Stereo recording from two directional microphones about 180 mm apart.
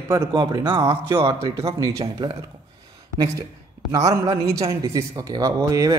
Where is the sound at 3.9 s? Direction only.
20° right (ahead or behind).